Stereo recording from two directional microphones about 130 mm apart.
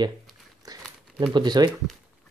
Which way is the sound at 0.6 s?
30° right (ahead or behind).